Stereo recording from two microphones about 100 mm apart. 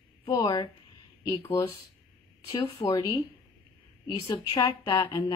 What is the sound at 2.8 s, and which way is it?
Speech, 40° left (ahead or behind).